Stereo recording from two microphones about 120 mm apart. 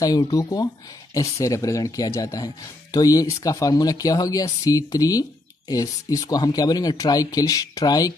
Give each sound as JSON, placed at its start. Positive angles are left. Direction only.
{"t": 0.0, "sound": "speech", "side_deg": 30}